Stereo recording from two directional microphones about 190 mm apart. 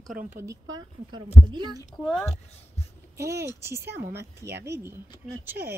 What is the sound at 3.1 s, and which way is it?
A woman's voice, 15° right (ahead or behind).